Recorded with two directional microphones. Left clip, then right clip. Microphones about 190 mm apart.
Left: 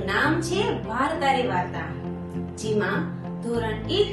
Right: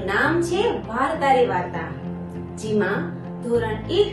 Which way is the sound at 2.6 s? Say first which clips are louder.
Right 3 dB; centre (ahead or behind).